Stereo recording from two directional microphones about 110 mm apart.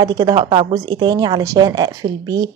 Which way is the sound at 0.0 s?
40° right (ahead or behind).